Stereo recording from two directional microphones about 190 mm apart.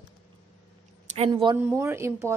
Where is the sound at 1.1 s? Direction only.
25° right (ahead or behind).